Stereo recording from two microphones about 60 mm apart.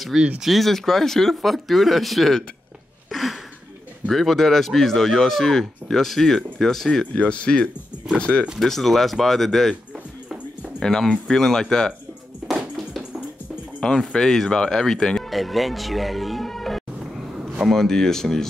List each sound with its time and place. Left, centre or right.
0.4 s speech: centre
3.1 s a sound: centre
4.1 s speech: centre
7.2 s speech: centre
8.5 s speech: centre
10.8 s speech: centre
12.5 s music: centre
13.9 s speech: centre